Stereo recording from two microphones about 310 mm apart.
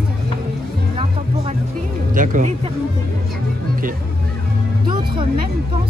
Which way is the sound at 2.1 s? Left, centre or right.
Right.